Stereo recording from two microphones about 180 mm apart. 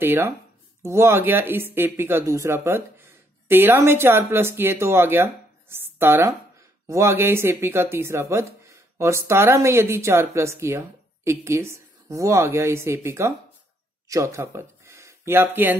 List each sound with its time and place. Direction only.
0.0 s speech: 10° right (ahead or behind)